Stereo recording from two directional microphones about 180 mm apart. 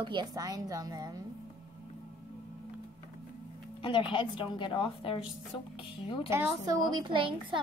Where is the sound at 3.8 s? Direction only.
30° left (ahead or behind).